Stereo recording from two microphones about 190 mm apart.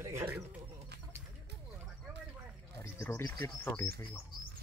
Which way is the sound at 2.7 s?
15° left (ahead or behind).